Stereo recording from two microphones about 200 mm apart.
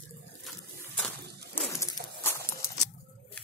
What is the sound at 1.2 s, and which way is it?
Bird, 50° right (ahead or behind).